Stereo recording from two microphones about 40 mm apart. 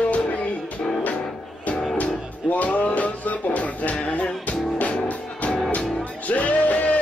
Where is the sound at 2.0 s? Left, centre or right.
Left.